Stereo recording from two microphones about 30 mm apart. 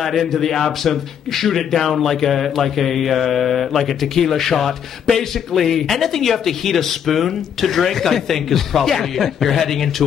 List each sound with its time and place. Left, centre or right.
0.0 s a man's voice: centre